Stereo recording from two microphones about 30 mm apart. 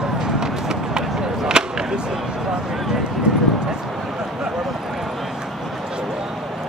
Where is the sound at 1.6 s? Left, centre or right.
Right.